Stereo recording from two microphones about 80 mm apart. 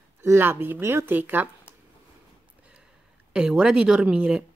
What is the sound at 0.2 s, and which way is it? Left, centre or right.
Speech, right.